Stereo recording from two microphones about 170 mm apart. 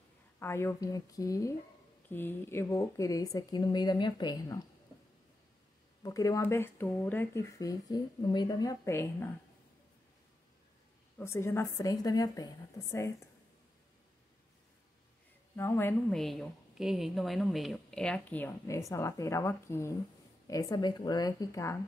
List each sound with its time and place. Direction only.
0.4 s speech: 15° left (ahead or behind)
6.0 s speech: 20° left (ahead or behind)
11.1 s speech: 15° left (ahead or behind)
15.5 s speech: 15° left (ahead or behind)
16.2 s speech: centre (ahead or behind); by 21.7 s 20° left (ahead or behind)